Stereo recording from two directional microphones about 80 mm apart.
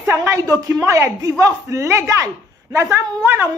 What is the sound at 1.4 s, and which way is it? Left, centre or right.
A woman's voice, right.